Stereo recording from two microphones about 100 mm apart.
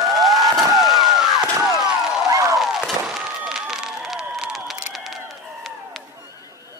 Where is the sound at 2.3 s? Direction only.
35° right (ahead or behind).